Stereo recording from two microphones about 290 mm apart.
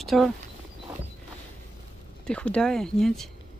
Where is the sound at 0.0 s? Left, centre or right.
Centre.